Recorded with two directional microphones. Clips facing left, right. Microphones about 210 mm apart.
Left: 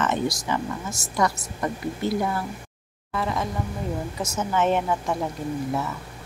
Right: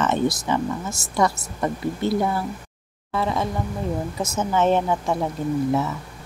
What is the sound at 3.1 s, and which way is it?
Speech, 30° right (ahead or behind).